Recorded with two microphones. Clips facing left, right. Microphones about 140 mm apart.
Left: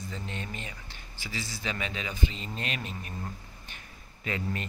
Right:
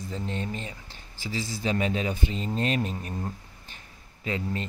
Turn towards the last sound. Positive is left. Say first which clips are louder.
# right 3 dB
turn(degrees=-25)  # may be behind; listen again after turning